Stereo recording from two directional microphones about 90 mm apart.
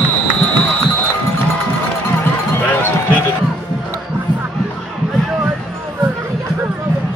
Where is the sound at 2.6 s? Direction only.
15° left (ahead or behind).